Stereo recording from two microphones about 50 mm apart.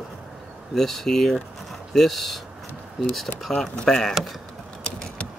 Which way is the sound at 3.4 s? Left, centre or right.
Centre.